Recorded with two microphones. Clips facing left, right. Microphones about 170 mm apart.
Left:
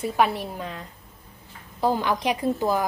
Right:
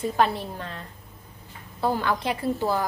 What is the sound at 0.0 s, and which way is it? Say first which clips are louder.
A child's voice: left 1 dB; 10° left (ahead or behind).